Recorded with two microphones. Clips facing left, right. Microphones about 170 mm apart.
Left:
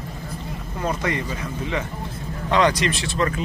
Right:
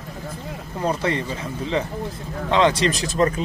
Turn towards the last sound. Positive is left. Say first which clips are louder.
# right 3 dB
turn(degrees=-40)  # may be behind; listen again after turning